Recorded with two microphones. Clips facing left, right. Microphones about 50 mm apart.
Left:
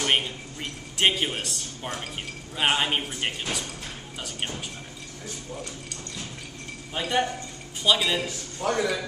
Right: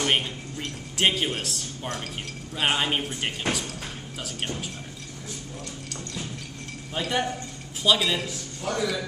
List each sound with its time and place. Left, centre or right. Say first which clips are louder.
0.0 s a man's voice: even; centre
3.4 s speech: right 4 dB; right
6.9 s speech: left 1 dB; centre
8.5 s a man's voice: left 4 dB; left